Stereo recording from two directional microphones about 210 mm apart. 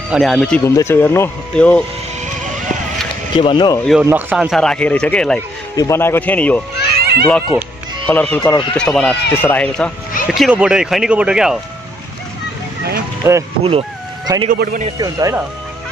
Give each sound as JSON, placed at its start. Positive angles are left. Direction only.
{"t": 0.1, "sound": "speech", "side_deg": 0}
{"t": 3.3, "sound": "speech", "side_deg": 25}
{"t": 4.0, "sound": "speech", "side_deg": -10}
{"t": 7.0, "sound": "children playing", "side_deg": -50}
{"t": 7.5, "sound": "speech", "side_deg": 0}
{"t": 8.4, "sound": "speech", "side_deg": 20}
{"t": 8.7, "sound": "speech", "side_deg": 5}
{"t": 13.2, "sound": "speech", "side_deg": -10}
{"t": 13.7, "sound": "speech", "side_deg": -20}
{"t": 14.5, "sound": "a man's voice", "side_deg": -40}
{"t": 15.0, "sound": "speech", "side_deg": -15}